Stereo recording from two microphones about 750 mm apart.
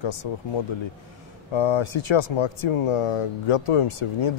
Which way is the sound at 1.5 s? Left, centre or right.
Left.